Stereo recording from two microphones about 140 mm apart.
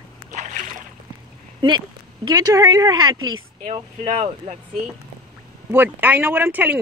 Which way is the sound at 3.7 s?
50° right (ahead or behind).